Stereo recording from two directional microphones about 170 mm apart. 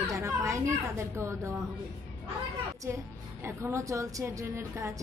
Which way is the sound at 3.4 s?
15° right (ahead or behind).